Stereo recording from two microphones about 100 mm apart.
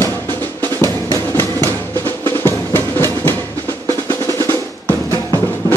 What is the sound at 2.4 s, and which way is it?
Music, 25° left (ahead or behind).